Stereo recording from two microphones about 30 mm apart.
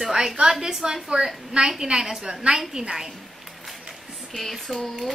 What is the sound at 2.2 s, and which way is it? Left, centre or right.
Speech, right.